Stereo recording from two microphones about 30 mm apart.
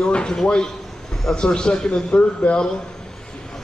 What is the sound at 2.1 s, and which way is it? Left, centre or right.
Speech, left.